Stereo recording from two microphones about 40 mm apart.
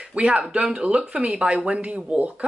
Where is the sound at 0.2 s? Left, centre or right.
Right.